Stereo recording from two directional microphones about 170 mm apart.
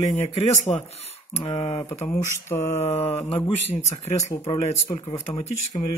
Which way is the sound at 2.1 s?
15° left (ahead or behind).